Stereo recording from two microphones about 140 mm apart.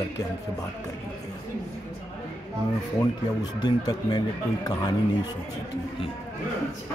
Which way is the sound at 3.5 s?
30° left (ahead or behind).